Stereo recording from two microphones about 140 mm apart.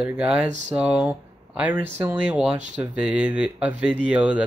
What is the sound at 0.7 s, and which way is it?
Speech, 10° right (ahead or behind).